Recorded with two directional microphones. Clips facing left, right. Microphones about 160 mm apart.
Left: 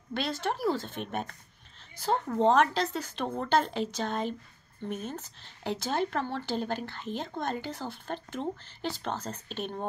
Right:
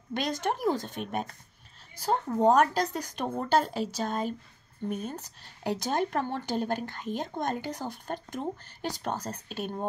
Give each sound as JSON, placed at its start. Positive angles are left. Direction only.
{"t": 0.1, "sound": "speech", "side_deg": -15}
{"t": 0.9, "sound": "speech", "side_deg": -40}
{"t": 2.0, "sound": "speech", "side_deg": -10}
{"t": 5.0, "sound": "speech", "side_deg": -15}